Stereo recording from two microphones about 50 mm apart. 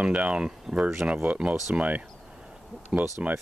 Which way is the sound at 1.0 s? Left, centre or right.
Right.